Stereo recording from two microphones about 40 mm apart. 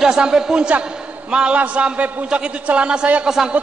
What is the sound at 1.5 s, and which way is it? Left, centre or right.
A man's voice, right.